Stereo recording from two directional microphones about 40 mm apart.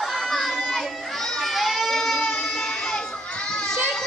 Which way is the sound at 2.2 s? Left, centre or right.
Left.